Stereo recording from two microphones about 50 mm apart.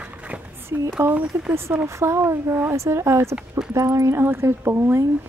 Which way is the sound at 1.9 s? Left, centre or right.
Right.